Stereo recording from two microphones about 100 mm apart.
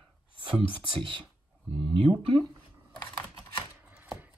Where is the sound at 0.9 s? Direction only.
55° right (ahead or behind).